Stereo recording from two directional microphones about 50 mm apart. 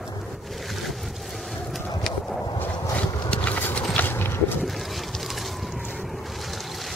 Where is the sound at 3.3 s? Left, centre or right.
Left.